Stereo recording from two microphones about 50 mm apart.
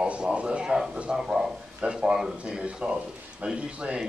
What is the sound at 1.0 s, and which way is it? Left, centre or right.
A man's voice, centre.